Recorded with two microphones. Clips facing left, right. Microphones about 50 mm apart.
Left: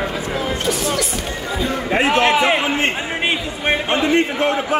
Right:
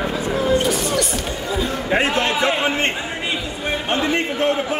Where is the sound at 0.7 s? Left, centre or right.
Centre.